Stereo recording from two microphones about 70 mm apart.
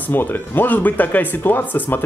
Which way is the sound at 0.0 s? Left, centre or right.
Left.